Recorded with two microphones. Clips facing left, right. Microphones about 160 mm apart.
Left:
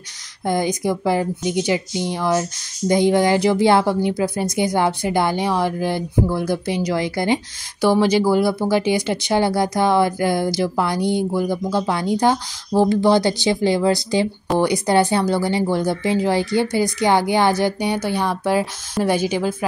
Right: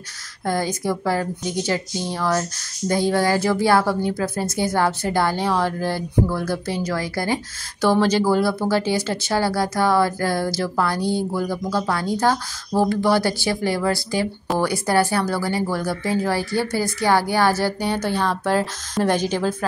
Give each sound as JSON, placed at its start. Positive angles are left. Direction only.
{"t": 0.5, "sound": "speech", "side_deg": 15}